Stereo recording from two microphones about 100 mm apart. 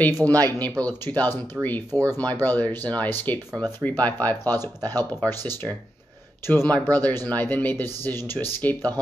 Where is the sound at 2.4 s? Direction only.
15° left (ahead or behind).